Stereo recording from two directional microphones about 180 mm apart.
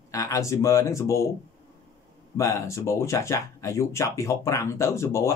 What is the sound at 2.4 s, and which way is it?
Speech, 15° left (ahead or behind).